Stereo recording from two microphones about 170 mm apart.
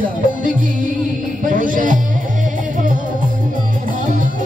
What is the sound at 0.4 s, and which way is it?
Music, 50° right (ahead or behind).